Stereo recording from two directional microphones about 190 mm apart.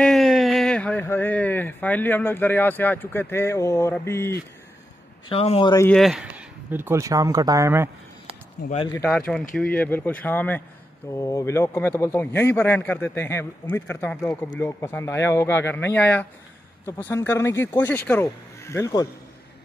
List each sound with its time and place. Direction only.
0.0 s speech: centre (ahead or behind)
5.3 s speech: 30° left (ahead or behind)
5.8 s speech: 5° left (ahead or behind); by 7.9 s 15° right (ahead or behind)
8.9 s a man's voice: 10° left (ahead or behind)